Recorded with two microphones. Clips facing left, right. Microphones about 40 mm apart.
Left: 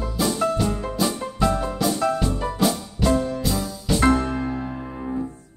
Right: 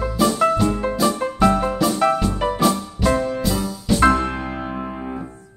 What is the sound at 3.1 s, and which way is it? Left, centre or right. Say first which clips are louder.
Music: right 1 dB; right.